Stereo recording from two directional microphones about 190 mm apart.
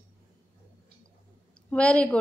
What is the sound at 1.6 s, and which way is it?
Speech, 5° left (ahead or behind).